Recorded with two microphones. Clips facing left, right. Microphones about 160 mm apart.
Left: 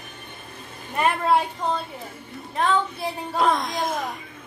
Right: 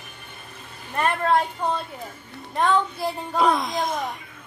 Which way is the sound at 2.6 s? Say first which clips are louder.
Right 1 dB; centre (ahead or behind).